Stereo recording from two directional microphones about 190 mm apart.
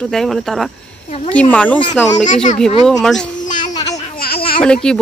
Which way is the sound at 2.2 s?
40° left (ahead or behind).